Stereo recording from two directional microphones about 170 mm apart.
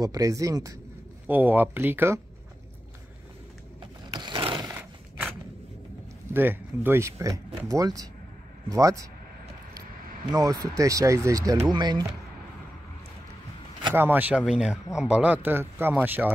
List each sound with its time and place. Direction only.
0.0 s speech: 20° right (ahead or behind)
4.1 s a sound: 25° right (ahead or behind)
6.3 s speech: 10° right (ahead or behind)
10.3 s speech: 20° right (ahead or behind)
13.9 s speech: 10° right (ahead or behind)